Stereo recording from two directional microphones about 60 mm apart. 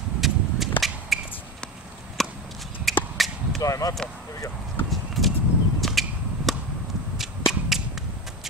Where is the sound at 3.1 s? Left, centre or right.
Centre.